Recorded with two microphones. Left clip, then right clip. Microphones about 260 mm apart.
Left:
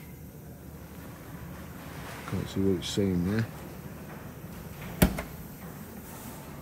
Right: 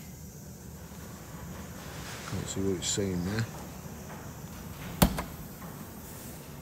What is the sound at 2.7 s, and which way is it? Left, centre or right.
Speech, centre.